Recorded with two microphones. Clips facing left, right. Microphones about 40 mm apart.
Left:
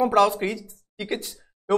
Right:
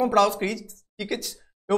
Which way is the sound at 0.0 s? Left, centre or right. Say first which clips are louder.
Left 1 dB; centre.